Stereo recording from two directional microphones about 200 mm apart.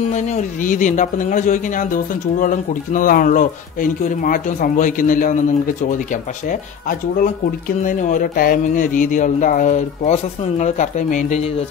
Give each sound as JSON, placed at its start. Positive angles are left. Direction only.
{"t": 0.1, "sound": "a man's voice", "side_deg": 35}
{"t": 6.5, "sound": "a man's voice", "side_deg": 45}